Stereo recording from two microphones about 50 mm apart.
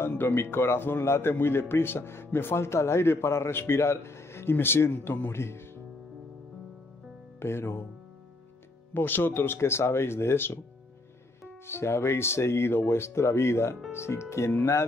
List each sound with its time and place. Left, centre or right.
0.2 s speech: left
5.4 s speech: left
7.3 s speech: left
8.9 s speech: left